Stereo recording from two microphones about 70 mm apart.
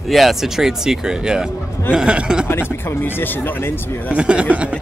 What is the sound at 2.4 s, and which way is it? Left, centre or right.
Speech, left.